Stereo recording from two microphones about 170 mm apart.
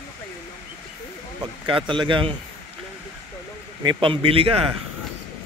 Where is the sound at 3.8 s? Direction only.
30° right (ahead or behind).